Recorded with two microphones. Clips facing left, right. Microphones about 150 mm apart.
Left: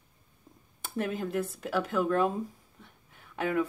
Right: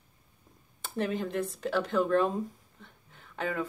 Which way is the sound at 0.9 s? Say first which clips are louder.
Even; 5° left (ahead or behind).